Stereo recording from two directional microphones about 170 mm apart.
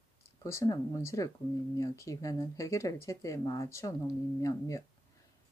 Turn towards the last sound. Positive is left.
turn(degrees=20)  # may be behind; listen again after turning